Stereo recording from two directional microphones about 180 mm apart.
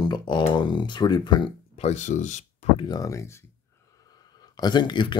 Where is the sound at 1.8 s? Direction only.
40° left (ahead or behind).